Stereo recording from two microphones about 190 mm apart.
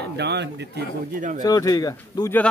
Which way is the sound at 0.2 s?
60° right (ahead or behind).